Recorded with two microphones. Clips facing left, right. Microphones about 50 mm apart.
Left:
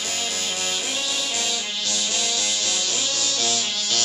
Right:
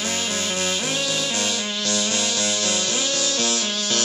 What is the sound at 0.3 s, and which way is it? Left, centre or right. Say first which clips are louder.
Music: right 3 dB; right.